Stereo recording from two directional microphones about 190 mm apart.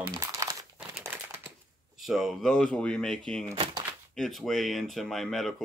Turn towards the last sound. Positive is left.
turn(degrees=0)  # may be behind; listen again after turning